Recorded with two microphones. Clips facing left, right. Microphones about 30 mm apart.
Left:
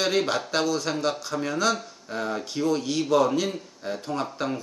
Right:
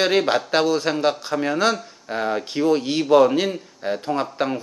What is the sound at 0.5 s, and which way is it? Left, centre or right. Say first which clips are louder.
A man's voice: right 6 dB; right.